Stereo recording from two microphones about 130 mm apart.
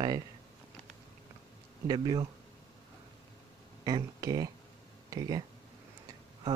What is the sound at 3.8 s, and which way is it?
Speech, 30° right (ahead or behind).